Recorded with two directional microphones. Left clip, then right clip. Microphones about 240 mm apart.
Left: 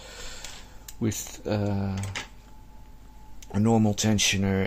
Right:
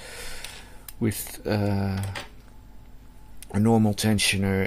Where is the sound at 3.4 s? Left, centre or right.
Centre.